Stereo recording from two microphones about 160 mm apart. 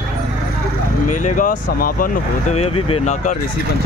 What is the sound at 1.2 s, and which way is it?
Speech, 50° left (ahead or behind).